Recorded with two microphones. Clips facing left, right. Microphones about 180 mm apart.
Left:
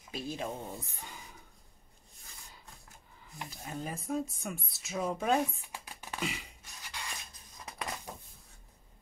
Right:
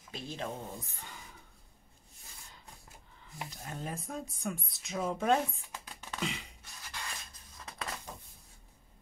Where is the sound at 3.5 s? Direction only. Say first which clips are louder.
Left 2 dB; centre (ahead or behind).